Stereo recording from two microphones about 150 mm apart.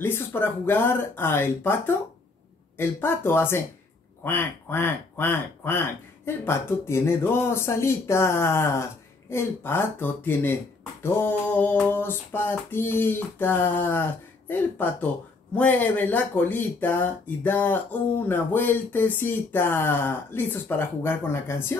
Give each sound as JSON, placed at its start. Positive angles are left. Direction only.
{"t": 0.0, "sound": "speech", "side_deg": 15}